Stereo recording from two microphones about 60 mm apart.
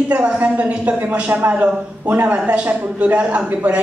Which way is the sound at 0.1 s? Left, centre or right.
Right.